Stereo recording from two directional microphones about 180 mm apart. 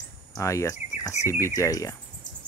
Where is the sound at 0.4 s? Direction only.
15° left (ahead or behind).